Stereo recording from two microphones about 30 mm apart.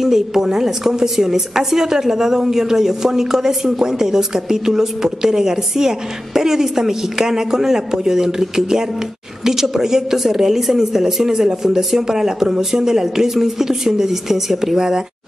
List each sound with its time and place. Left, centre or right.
0.0 s a woman's voice: centre